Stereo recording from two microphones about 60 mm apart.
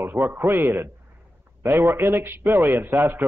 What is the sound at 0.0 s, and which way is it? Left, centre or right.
A man's voice, right.